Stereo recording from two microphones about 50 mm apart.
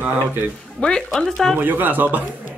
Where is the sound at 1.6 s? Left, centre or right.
Right.